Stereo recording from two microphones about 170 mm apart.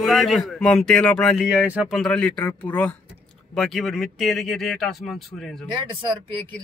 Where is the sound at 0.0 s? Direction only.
Centre (ahead or behind).